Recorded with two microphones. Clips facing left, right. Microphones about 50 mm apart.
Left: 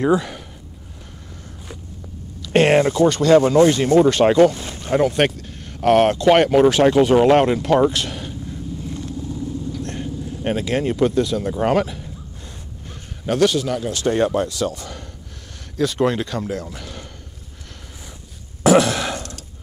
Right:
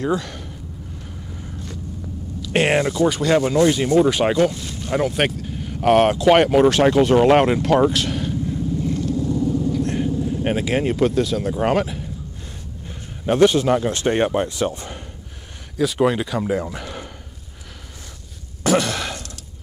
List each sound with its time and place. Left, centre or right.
0.0 s speech: centre
2.4 s speech: centre
9.2 s vehicle: right
9.7 s speech: centre
13.3 s speech: right
15.8 s speech: centre
18.6 s a sound: centre